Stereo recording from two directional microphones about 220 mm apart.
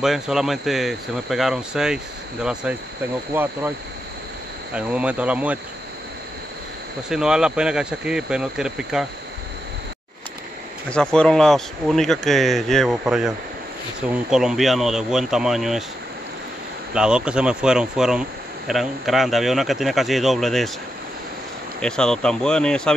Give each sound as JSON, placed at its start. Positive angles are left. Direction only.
{"t": 0.0, "sound": "speech", "side_deg": 0}
{"t": 3.3, "sound": "speech", "side_deg": -10}
{"t": 4.7, "sound": "speech", "side_deg": -5}
{"t": 7.1, "sound": "speech", "side_deg": -5}
{"t": 10.9, "sound": "speech", "side_deg": 5}
{"t": 16.9, "sound": "speech", "side_deg": -5}
{"t": 21.8, "sound": "speech", "side_deg": 5}